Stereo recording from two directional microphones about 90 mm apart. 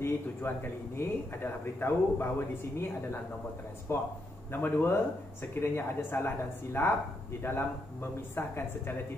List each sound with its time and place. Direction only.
0.0 s a man's voice: 25° left (ahead or behind)